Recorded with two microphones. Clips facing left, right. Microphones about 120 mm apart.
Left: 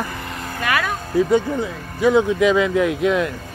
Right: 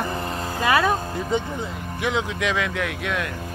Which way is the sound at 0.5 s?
25° right (ahead or behind).